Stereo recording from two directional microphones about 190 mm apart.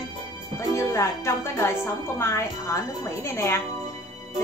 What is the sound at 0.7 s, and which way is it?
Speech, 15° left (ahead or behind).